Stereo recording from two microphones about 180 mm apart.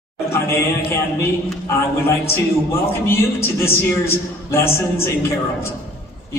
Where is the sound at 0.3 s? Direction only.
15° left (ahead or behind).